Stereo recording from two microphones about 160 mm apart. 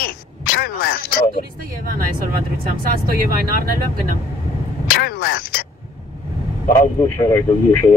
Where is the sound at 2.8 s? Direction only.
65° right (ahead or behind).